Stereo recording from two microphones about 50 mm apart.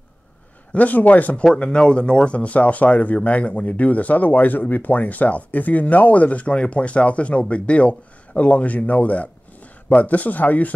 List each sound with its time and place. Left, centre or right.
0.7 s speech: left
1.4 s a man's voice: centre